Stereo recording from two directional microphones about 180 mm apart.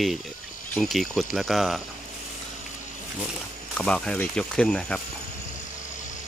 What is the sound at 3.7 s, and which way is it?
Speech, 5° left (ahead or behind).